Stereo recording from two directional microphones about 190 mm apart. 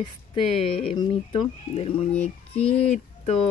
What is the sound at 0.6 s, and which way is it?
Speech, 30° left (ahead or behind).